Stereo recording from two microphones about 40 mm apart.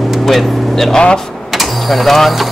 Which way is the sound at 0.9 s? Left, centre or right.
Centre.